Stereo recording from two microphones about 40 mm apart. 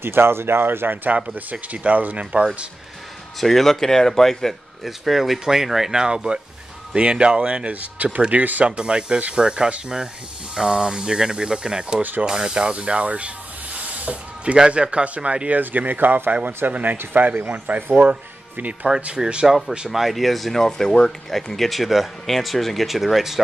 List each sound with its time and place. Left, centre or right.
0.0 s speech: right
1.3 s speech: right
3.3 s speech: centre
4.8 s speech: centre; by 8.6 s right
8.6 s speech: right
12.0 s speech: right
12.3 s speech: centre
13.7 s snake: right
14.7 s speech: right
15.6 s speech: right
19.1 s speech: right
19.9 s speech: centre